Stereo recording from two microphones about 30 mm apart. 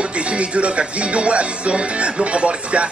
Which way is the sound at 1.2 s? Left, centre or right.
Right.